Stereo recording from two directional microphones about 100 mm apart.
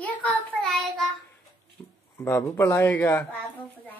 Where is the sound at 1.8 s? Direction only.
25° left (ahead or behind).